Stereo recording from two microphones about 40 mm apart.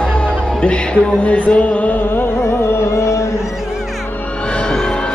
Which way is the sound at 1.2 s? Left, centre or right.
Left.